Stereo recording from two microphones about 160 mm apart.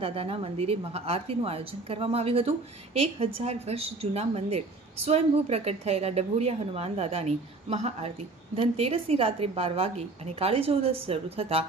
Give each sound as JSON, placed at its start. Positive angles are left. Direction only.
{"t": 0.0, "sound": "a woman's voice", "side_deg": -35}